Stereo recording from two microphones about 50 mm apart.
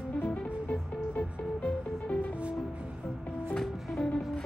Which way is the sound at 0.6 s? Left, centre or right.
Left.